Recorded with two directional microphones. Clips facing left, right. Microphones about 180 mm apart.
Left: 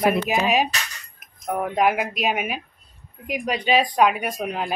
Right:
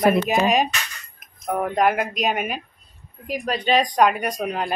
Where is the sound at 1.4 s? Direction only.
5° left (ahead or behind).